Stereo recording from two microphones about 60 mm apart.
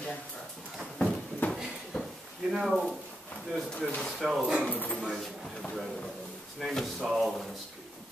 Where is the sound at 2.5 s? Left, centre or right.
Centre.